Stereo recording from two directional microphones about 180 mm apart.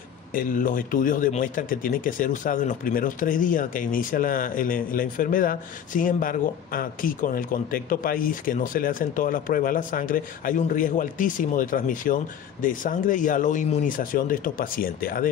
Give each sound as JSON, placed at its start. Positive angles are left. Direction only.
{"t": 0.3, "sound": "speech", "side_deg": 50}